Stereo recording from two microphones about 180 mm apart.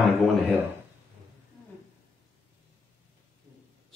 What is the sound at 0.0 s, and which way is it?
Speech, centre (ahead or behind).